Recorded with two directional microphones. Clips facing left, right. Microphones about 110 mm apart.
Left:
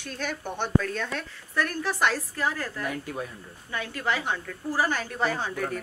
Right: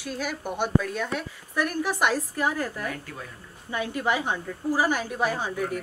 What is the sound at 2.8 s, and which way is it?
Speech, 15° left (ahead or behind).